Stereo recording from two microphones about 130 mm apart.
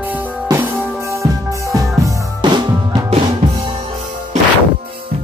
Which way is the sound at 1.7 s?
30° right (ahead or behind).